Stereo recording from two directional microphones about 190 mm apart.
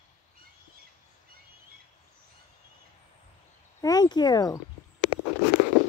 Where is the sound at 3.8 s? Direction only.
20° left (ahead or behind).